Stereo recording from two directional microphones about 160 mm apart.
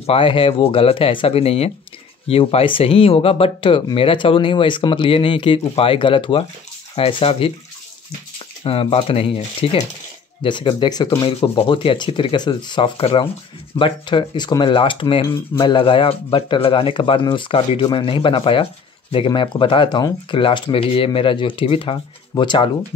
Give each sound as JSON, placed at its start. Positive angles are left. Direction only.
{"t": 0.0, "sound": "speech", "side_deg": 35}
{"t": 8.6, "sound": "speech", "side_deg": 35}
{"t": 11.2, "sound": "speech", "side_deg": 35}